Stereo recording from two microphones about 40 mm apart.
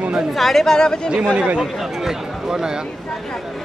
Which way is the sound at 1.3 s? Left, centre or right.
Right.